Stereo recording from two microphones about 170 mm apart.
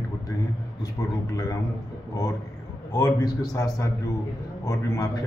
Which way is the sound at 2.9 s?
25° left (ahead or behind).